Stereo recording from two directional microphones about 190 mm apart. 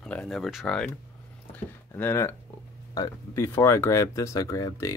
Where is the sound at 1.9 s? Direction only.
10° left (ahead or behind).